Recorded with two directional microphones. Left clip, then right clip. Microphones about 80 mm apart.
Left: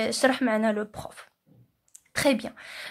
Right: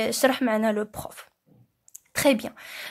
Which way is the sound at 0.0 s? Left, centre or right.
Right.